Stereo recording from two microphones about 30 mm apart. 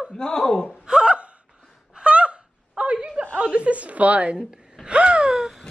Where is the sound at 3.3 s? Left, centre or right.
Right.